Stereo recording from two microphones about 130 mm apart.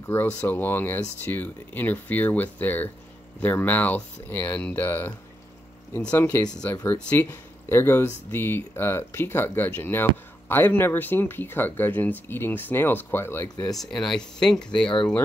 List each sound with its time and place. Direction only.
0.0 s speech: 20° left (ahead or behind)
13.7 s speech: 5° left (ahead or behind)